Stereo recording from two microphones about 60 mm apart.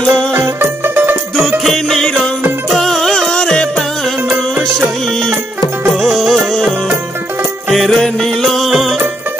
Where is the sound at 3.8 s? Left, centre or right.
Centre.